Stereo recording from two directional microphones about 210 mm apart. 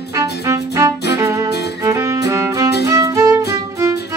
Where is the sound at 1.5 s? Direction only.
50° left (ahead or behind).